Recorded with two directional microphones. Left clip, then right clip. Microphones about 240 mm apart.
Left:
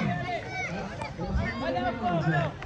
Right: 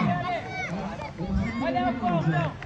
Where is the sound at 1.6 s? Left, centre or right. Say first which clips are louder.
Right 3 dB; right.